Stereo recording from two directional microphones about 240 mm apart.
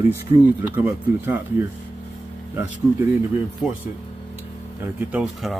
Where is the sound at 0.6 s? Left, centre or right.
Centre.